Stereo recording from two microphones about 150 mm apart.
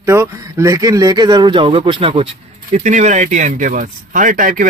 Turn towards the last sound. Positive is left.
turn(degrees=-65)  # may be behind; listen again after turning